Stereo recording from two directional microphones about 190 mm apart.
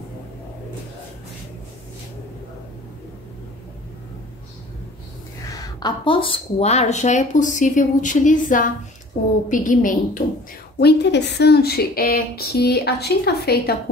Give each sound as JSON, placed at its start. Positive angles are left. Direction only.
{"t": 5.5, "sound": "a woman's voice", "side_deg": 20}
{"t": 10.8, "sound": "a woman's voice", "side_deg": 60}